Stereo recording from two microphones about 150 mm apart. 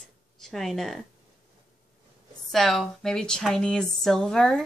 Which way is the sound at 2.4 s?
Centre (ahead or behind).